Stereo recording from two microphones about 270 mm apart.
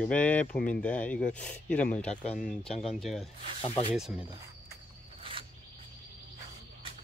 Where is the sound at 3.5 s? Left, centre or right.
Left.